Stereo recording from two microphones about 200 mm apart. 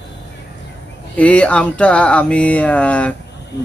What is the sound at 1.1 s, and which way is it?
Speech, 5° left (ahead or behind).